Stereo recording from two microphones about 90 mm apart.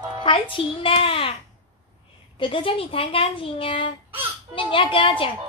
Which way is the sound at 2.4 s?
75° left (ahead or behind).